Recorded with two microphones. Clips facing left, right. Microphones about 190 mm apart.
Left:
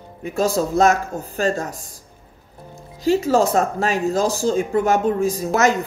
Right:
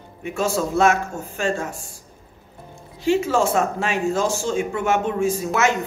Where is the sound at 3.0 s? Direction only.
35° left (ahead or behind).